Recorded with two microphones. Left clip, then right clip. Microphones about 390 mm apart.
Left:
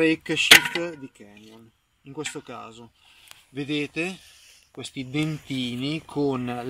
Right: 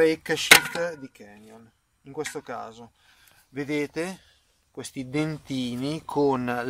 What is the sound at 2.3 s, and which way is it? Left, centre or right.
A man's voice, right.